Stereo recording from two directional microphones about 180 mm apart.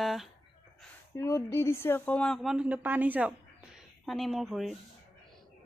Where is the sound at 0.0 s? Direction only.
Centre (ahead or behind).